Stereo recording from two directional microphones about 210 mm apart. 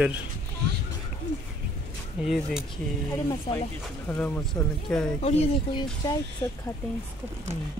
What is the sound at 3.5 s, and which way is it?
Speech, 25° left (ahead or behind).